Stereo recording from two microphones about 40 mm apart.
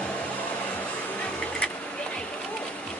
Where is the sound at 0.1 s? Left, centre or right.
Left.